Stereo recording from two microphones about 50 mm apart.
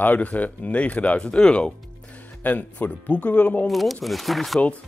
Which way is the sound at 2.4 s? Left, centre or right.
Left.